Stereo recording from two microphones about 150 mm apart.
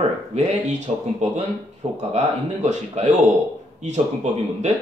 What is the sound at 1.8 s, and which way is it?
Speech, 35° right (ahead or behind).